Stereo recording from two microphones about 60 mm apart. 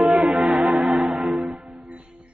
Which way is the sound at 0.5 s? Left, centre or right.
Centre.